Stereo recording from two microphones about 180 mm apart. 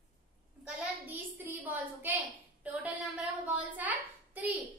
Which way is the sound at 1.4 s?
10° right (ahead or behind).